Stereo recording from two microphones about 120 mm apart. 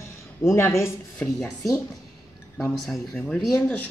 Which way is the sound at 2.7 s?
Centre (ahead or behind).